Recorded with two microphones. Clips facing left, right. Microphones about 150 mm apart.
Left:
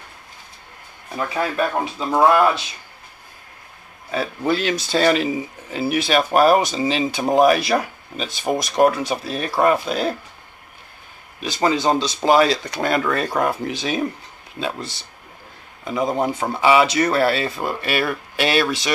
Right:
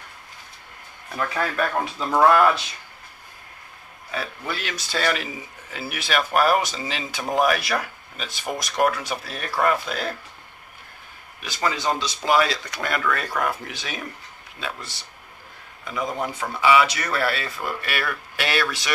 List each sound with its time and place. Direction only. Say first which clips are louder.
1.1 s speech: left 3 dB; 20° left (ahead or behind)
4.1 s speech: left 9 dB; 30° left (ahead or behind)
11.4 s speech: left 6 dB; 25° left (ahead or behind)